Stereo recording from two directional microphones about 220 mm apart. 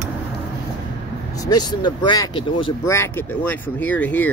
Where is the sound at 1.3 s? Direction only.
20° left (ahead or behind).